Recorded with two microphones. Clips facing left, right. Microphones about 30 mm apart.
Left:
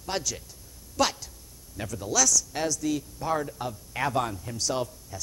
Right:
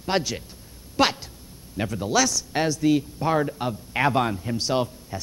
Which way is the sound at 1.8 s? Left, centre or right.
Right.